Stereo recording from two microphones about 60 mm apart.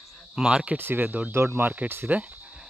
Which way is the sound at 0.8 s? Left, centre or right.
Right.